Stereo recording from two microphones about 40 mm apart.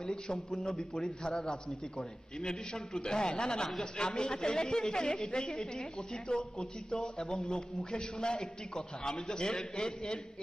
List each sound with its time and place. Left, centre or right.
0.3 s a man's voice: left
1.3 s a man's voice: centre
2.4 s a man's voice: centre